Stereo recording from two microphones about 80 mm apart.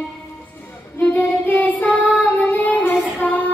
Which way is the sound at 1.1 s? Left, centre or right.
Left.